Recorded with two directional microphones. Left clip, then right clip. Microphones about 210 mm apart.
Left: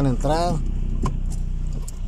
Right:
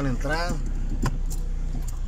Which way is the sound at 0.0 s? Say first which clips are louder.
Left 6 dB; 20° left (ahead or behind).